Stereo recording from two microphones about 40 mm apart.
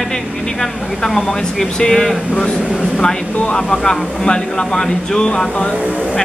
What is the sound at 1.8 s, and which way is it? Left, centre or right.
Speech, centre.